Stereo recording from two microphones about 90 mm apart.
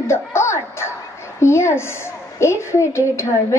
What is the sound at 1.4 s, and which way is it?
A woman's voice, 30° left (ahead or behind).